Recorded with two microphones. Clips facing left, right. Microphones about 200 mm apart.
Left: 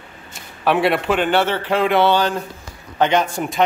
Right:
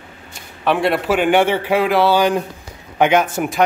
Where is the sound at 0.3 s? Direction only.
Centre (ahead or behind).